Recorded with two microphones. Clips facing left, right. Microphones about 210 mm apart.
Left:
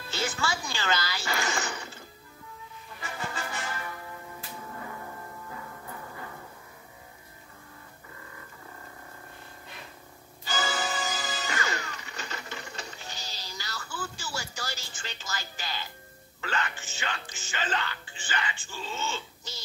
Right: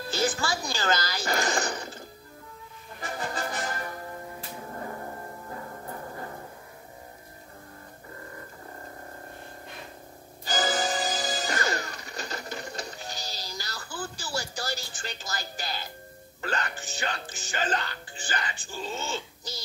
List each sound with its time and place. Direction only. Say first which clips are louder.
0.1 s music: right 3 dB; 35° right (ahead or behind)
10.4 s music: right 4 dB; 40° right (ahead or behind)